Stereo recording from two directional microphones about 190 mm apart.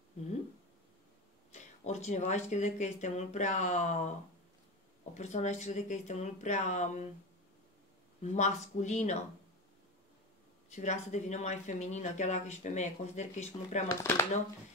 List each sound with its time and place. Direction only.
1.5 s speech: 35° left (ahead or behind)
5.1 s speech: 35° left (ahead or behind)
8.2 s speech: 35° left (ahead or behind)
10.7 s speech: 40° left (ahead or behind)
13.8 s speech: 15° left (ahead or behind)